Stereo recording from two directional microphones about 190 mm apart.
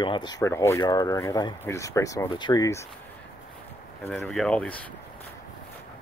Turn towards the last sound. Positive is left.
turn(degrees=5)  # may be behind; listen again after turning